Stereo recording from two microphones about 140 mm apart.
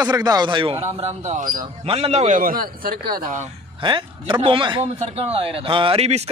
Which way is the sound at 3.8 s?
35° right (ahead or behind).